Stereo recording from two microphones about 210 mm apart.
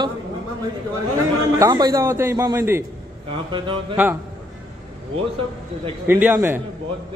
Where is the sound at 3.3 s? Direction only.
25° right (ahead or behind).